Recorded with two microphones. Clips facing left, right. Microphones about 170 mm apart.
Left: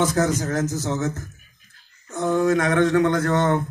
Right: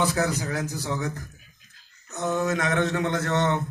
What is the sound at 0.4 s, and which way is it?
Speech, 45° left (ahead or behind).